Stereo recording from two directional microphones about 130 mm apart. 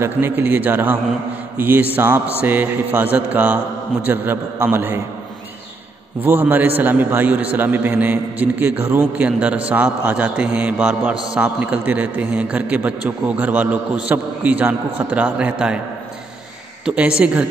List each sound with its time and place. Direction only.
0.0 s a man's voice: 15° right (ahead or behind)
6.2 s a man's voice: 15° right (ahead or behind)
16.8 s a man's voice: 10° right (ahead or behind)